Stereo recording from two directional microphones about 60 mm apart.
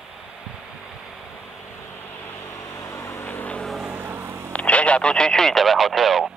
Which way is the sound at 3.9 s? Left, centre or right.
Right.